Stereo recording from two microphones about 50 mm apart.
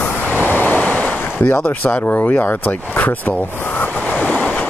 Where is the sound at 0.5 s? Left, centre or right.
Left.